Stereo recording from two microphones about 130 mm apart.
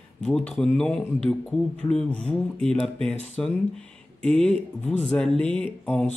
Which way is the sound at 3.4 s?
5° left (ahead or behind).